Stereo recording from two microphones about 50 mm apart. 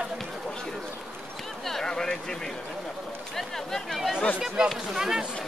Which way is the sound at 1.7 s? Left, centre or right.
Centre.